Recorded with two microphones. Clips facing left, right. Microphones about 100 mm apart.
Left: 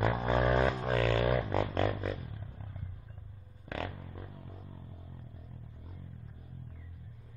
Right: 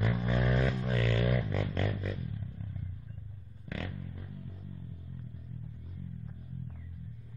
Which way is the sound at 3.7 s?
45° left (ahead or behind).